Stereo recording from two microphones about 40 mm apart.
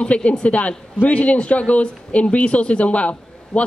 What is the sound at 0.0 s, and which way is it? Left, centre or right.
A man's voice, left.